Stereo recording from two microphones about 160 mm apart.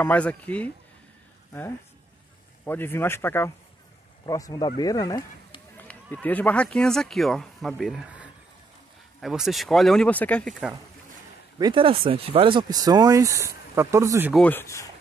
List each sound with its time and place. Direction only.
0.0 s speech: 10° left (ahead or behind)
2.6 s speech: 15° left (ahead or behind)
6.2 s speech: 10° left (ahead or behind)
11.5 s speech: 30° right (ahead or behind)
14.3 s speech: 10° left (ahead or behind)